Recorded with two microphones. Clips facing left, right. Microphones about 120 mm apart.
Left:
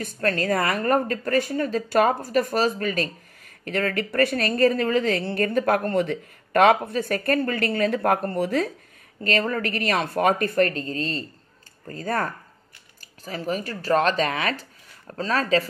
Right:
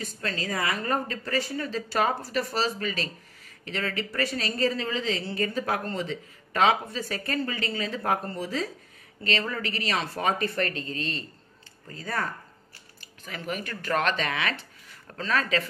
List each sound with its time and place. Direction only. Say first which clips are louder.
0.0 s a woman's voice: left 8 dB; 55° left (ahead or behind)
9.2 s speech: left 5 dB; 45° left (ahead or behind)